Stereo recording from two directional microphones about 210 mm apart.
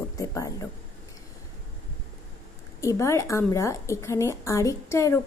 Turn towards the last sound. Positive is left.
turn(degrees=15)  # may be behind; listen again after turning